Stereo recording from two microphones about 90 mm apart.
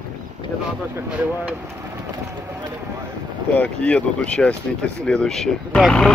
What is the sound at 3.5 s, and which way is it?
Speech, 15° left (ahead or behind).